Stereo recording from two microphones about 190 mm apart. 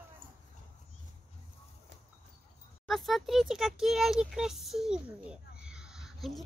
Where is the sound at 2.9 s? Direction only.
Centre (ahead or behind).